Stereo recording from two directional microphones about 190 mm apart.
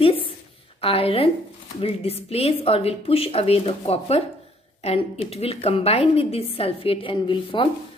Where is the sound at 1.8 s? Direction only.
30° left (ahead or behind).